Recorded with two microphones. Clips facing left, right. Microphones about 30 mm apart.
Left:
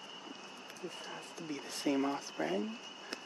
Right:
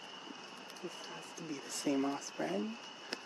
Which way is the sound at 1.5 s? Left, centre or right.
Centre.